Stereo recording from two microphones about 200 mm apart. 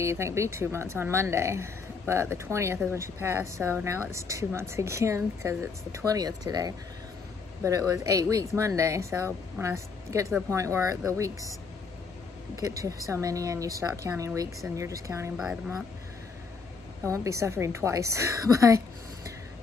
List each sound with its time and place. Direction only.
0.0 s speech: 15° right (ahead or behind)
12.5 s speech: 15° right (ahead or behind)
17.0 s speech: 15° right (ahead or behind)